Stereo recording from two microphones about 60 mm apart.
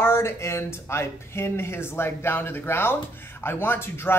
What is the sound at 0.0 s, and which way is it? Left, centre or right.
A man's voice, left.